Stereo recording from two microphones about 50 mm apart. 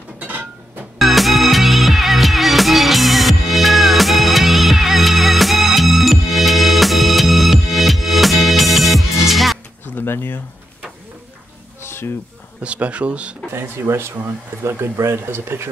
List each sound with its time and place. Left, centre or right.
0.9 s music: centre
9.9 s a sound: left
11.8 s music: left
12.6 s speech: right
13.5 s speech: right